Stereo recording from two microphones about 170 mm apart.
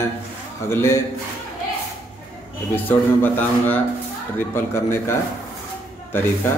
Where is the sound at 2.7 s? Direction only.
10° left (ahead or behind).